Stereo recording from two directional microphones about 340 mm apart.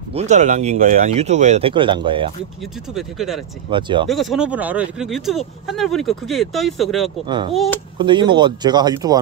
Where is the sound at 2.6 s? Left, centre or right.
Centre.